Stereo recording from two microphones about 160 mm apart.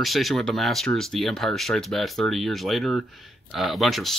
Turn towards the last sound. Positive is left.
turn(degrees=0)  # may be behind; listen again after turning